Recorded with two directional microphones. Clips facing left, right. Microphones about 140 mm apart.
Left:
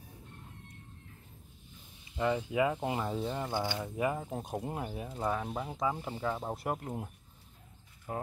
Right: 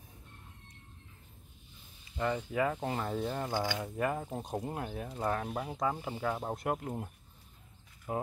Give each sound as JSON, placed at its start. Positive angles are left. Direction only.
{"t": 2.1, "sound": "speech", "side_deg": 20}
{"t": 3.1, "sound": "speech", "side_deg": 5}
{"t": 8.1, "sound": "speech", "side_deg": -10}